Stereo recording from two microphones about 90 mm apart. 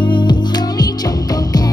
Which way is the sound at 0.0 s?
60° left (ahead or behind).